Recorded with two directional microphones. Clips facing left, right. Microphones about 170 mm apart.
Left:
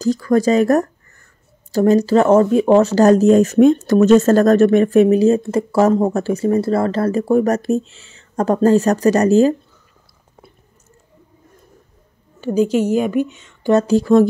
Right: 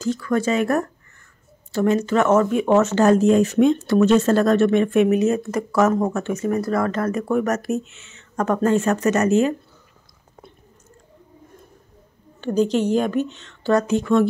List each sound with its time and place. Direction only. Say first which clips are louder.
0.0 s speech: left 6 dB; 40° left (ahead or behind)
12.4 s a woman's voice: left 3 dB; 10° left (ahead or behind)
13.7 s speech: left 6 dB; 35° left (ahead or behind)